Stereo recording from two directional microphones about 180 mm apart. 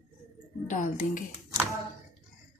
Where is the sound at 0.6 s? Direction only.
45° left (ahead or behind).